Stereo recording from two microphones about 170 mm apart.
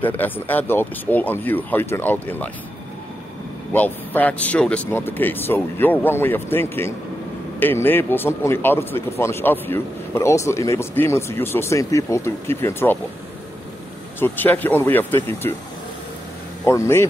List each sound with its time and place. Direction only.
0.0 s a man's voice: 10° left (ahead or behind)
3.7 s a man's voice: 10° left (ahead or behind)
14.2 s a man's voice: 10° left (ahead or behind)
16.6 s a man's voice: 15° left (ahead or behind)